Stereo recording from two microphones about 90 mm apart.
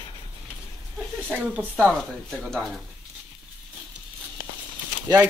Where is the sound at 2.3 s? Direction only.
5° left (ahead or behind).